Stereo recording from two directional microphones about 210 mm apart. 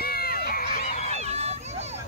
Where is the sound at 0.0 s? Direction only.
45° left (ahead or behind).